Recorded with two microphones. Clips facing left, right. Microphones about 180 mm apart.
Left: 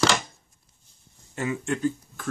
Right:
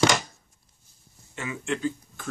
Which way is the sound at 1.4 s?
40° left (ahead or behind).